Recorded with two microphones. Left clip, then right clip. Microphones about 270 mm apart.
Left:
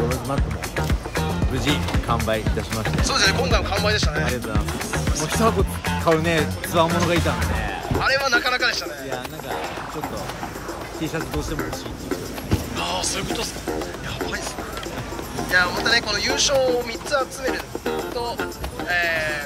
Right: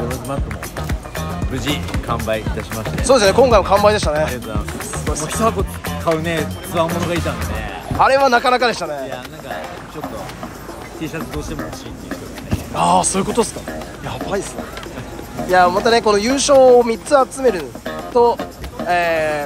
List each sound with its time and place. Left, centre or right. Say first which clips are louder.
1.5 s speech: right 2 dB; centre
3.0 s speech: right 9 dB; centre
5.1 s speech: right 3 dB; centre
8.0 s speech: right 8 dB; centre
12.7 s speech: right 12 dB; centre
15.5 s speech: right 6 dB; centre
18.9 s speech: right 6 dB; centre